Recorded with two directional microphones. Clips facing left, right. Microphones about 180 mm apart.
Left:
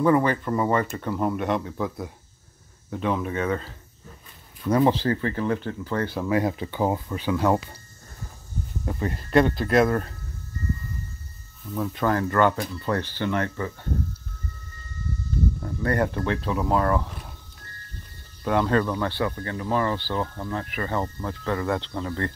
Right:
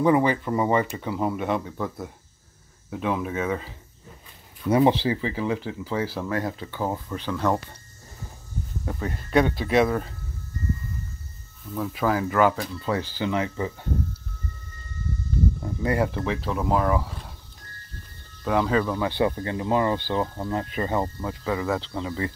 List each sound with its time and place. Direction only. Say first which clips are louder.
0.0 s speech: even; 10° right (ahead or behind)
6.2 s speech: left 4 dB; 15° left (ahead or behind)
9.0 s speech: left 2 dB; centre (ahead or behind)
11.7 s speech: even; centre (ahead or behind)
15.6 s speech: left 1 dB; 10° right (ahead or behind)
18.4 s speech: left 1 dB; centre (ahead or behind)
19.0 s speech: right 3 dB; 20° right (ahead or behind)
21.2 s speech: even; 5° right (ahead or behind)